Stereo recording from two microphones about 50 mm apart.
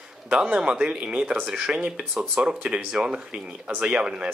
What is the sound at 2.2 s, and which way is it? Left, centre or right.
Speech, centre.